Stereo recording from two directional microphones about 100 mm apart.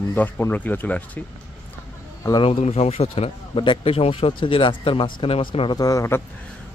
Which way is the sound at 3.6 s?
55° left (ahead or behind).